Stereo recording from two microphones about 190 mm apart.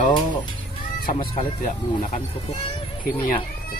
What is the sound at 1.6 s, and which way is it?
Speech, 40° left (ahead or behind).